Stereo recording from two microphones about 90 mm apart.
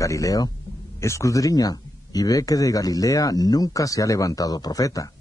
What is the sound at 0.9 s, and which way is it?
Speech, 35° left (ahead or behind).